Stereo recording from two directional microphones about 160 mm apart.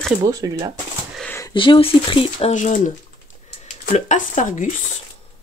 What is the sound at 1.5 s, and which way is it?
Speech, 30° left (ahead or behind).